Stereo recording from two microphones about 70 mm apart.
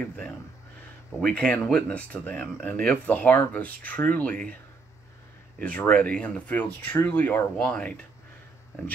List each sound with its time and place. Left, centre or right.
0.0 s speech: left
5.6 s speech: centre
7.6 s speech: centre